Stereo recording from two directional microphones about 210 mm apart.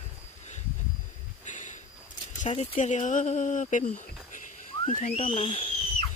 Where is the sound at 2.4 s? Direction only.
30° left (ahead or behind).